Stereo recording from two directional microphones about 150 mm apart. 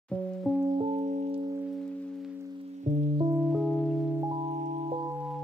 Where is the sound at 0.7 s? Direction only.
40° right (ahead or behind).